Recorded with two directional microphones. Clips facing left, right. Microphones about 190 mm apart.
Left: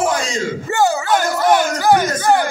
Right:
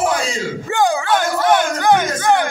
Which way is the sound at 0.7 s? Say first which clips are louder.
Even; 5° left (ahead or behind).